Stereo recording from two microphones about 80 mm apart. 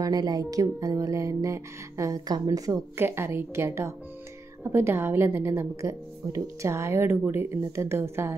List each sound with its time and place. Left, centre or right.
0.0 s speech: right
3.0 s speech: right